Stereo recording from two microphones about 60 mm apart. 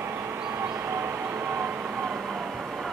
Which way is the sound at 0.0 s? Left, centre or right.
Right.